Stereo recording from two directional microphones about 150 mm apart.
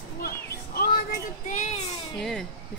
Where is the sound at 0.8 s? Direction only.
80° left.